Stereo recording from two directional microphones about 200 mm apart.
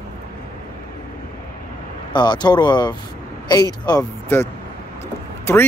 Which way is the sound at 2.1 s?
20° left (ahead or behind).